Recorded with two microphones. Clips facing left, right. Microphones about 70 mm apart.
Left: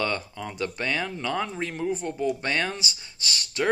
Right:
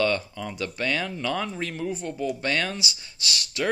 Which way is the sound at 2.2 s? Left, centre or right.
Left.